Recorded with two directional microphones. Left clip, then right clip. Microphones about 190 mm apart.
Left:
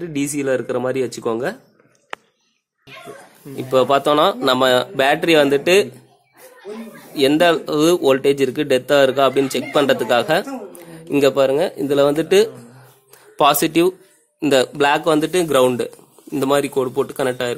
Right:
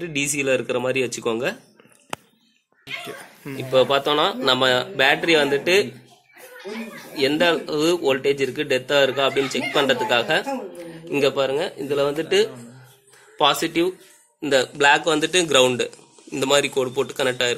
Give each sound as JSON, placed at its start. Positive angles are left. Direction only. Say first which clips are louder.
{"t": 0.0, "sound": "speech", "louder": "left 1 dB", "side_deg": 45}
{"t": 3.5, "sound": "speech", "louder": "left 3 dB", "side_deg": 60}
{"t": 7.2, "sound": "speech", "louder": "left 5 dB", "side_deg": 55}